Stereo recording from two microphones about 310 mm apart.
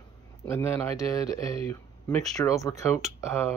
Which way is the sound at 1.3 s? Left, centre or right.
Centre.